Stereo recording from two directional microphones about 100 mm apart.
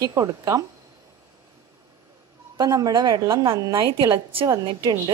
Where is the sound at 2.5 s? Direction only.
40° right (ahead or behind).